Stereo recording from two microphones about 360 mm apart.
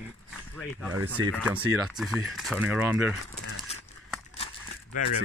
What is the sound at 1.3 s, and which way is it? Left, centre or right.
Speech, centre.